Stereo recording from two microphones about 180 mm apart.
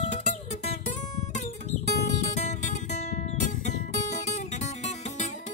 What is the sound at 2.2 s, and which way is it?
Music, 40° left (ahead or behind).